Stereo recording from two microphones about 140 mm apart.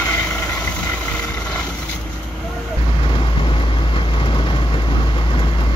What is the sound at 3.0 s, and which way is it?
Vehicle, 35° left (ahead or behind).